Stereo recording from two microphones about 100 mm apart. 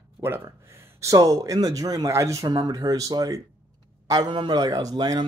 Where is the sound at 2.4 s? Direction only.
45° right (ahead or behind).